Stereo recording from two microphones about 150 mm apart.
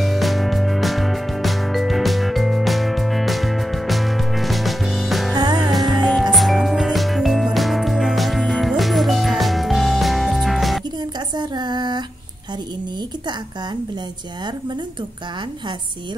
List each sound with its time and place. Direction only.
0.0 s music: centre (ahead or behind)
5.3 s music: 30° right (ahead or behind)
5.6 s music: centre (ahead or behind)
11.3 s female singing: 30° right (ahead or behind)